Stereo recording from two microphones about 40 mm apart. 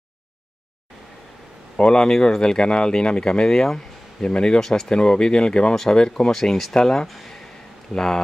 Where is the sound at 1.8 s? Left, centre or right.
Left.